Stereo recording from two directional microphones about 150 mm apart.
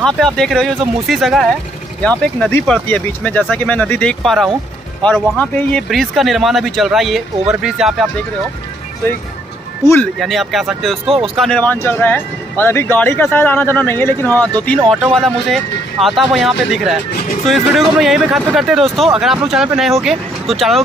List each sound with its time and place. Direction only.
0.0 s speech: 5° left (ahead or behind)
10.1 s speech: centre (ahead or behind)
11.1 s speech: 35° right (ahead or behind)
11.3 s speech: 5° left (ahead or behind)
14.9 s speech: 5° left (ahead or behind)